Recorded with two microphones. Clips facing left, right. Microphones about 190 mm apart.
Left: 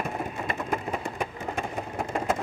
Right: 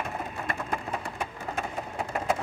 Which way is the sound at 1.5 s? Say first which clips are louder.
Left 1 dB; 5° right (ahead or behind).